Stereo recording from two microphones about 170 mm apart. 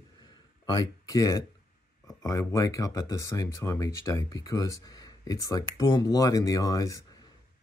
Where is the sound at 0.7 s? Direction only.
20° left (ahead or behind).